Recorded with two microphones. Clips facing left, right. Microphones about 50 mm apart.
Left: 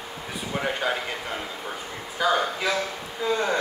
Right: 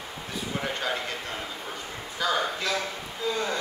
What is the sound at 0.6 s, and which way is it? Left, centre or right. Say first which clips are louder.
Speech: left 5 dB; centre.